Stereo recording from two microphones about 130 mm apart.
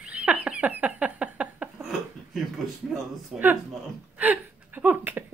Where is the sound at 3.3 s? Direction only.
Centre (ahead or behind).